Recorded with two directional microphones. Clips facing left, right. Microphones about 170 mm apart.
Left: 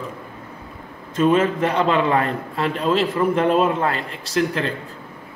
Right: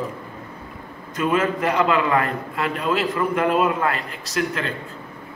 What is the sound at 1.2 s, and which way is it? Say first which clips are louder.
A man's voice: left 4 dB; 30° left (ahead or behind).